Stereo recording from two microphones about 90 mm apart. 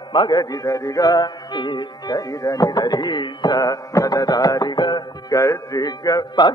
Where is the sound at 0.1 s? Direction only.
55° left (ahead or behind).